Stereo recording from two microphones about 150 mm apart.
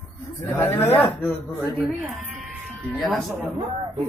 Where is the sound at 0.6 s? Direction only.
15° left (ahead or behind).